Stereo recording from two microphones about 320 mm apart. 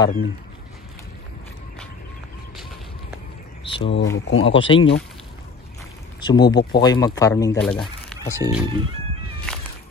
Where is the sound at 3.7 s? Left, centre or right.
Left.